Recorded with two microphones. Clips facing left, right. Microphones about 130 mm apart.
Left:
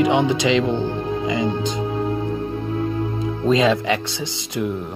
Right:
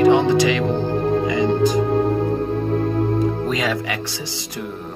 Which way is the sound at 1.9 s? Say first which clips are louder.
Right 5 dB; 55° right (ahead or behind).